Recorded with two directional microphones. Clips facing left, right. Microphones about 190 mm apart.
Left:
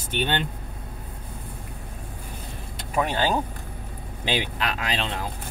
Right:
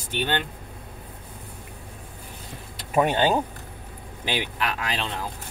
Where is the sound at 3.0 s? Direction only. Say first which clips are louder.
Right 3 dB; 20° right (ahead or behind).